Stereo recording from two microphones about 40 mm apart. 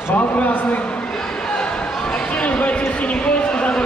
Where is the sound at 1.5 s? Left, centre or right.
Left.